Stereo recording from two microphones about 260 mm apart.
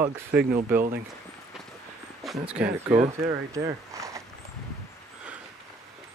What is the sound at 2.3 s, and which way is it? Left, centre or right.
Speech, right.